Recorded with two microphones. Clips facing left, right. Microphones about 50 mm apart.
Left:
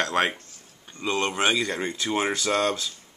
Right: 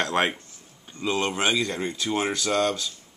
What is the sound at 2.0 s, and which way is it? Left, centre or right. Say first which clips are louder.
Speech: left 1 dB; centre.